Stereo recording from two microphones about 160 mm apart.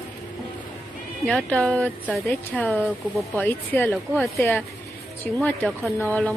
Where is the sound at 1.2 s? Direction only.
5° left (ahead or behind).